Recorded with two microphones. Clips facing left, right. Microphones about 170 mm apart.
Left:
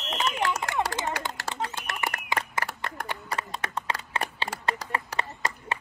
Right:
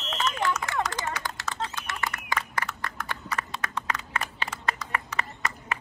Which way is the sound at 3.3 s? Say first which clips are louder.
Left 1 dB; 30° left (ahead or behind).